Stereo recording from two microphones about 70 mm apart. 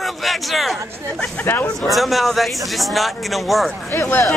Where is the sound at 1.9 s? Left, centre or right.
Centre.